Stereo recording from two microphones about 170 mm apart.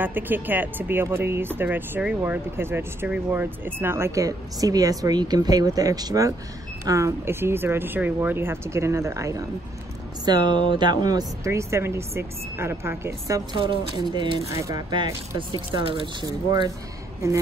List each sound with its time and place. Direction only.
0.0 s speech: 10° right (ahead or behind); by 16.7 s 25° right (ahead or behind)